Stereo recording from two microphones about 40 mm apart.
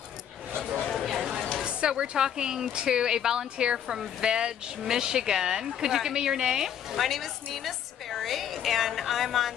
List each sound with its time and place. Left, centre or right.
1.1 s chatter: centre
1.6 s speech: right
7.0 s a woman's voice: centre